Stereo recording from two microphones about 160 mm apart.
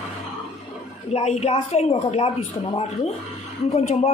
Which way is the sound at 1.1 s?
40° left (ahead or behind).